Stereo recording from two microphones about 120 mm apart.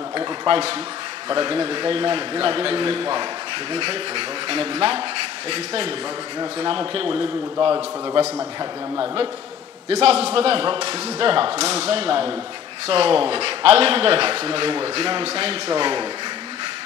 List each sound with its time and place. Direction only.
0.5 s speech: 55° right (ahead or behind)
1.3 s speech: 40° right (ahead or behind)
6.6 s a man's voice: 45° right (ahead or behind)